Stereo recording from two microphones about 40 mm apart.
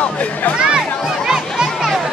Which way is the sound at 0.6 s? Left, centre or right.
Right.